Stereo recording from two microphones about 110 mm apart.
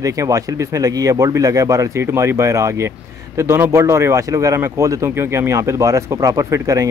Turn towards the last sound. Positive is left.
turn(degrees=-30)  # may be behind; listen again after turning